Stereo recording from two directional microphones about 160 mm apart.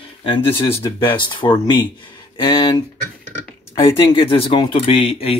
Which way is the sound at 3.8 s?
35° left (ahead or behind).